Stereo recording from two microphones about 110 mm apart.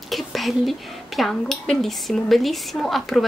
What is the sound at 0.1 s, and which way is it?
Speech, centre (ahead or behind).